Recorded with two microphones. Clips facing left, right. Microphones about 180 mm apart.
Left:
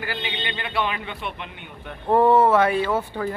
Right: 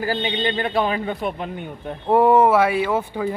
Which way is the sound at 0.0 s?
40° right (ahead or behind).